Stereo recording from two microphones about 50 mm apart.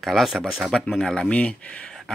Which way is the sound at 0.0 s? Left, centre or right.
Centre.